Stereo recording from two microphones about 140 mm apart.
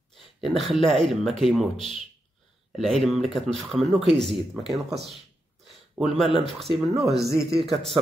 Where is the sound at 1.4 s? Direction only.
Centre (ahead or behind).